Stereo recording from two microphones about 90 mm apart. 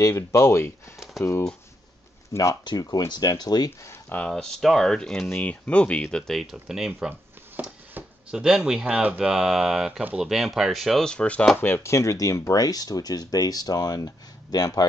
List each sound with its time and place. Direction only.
0.0 s speech: 35° left (ahead or behind)
0.9 s typewriter: centre (ahead or behind)
2.6 s speech: 50° left (ahead or behind)
3.8 s speech: 25° left (ahead or behind)
4.3 s speech: 5° left (ahead or behind)
7.5 s speech: 15° right (ahead or behind)
9.3 s speech: 5° right (ahead or behind); by 11.5 s 15° left (ahead or behind)
11.6 s speech: 30° left (ahead or behind); by 14.9 s 45° left (ahead or behind)